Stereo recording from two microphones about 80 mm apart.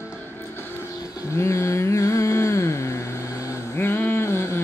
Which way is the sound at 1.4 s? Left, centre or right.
Left.